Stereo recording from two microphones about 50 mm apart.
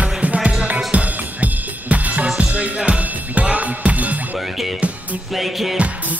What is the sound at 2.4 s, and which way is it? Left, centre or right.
Music, right.